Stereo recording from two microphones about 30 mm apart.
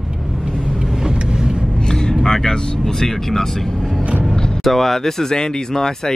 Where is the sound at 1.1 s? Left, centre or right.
Right.